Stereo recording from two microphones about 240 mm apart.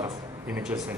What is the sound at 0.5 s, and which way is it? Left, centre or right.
Speech, centre.